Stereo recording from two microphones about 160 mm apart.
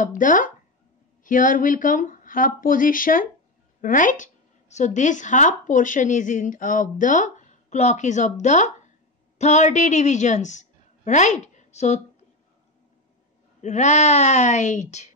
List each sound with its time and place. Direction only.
0.0 s a woman's voice: 55° left (ahead or behind)
11.4 s a sound: 45° left (ahead or behind)
13.6 s a woman's voice: 45° left (ahead or behind)